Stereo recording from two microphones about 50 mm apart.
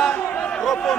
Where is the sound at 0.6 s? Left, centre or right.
Centre.